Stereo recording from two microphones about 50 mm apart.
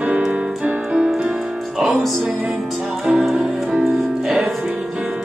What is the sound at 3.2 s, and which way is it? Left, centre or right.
Music, centre.